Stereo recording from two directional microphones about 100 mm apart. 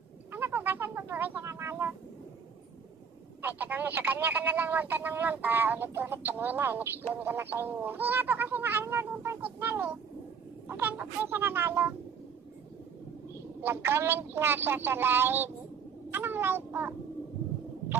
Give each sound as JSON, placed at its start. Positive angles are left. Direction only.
{"t": 0.3, "sound": "cat", "side_deg": -20}
{"t": 3.4, "sound": "speech", "side_deg": -15}
{"t": 13.6, "sound": "speech", "side_deg": -25}